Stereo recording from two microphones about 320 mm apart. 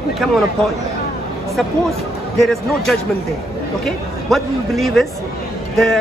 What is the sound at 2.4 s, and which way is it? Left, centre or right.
Speech, centre.